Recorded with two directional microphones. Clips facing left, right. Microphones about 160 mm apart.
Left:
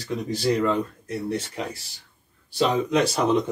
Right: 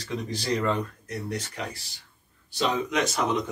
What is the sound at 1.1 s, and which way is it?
Speech, 30° left (ahead or behind).